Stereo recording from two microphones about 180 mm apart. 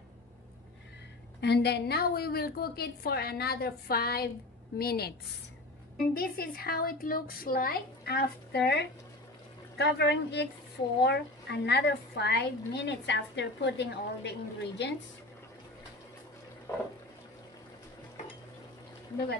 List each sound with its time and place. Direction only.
1.4 s a woman's voice: 65° left (ahead or behind)
6.1 s a woman's voice: 55° left (ahead or behind)